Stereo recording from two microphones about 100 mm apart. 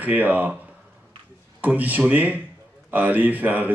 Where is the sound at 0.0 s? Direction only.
15° right (ahead or behind).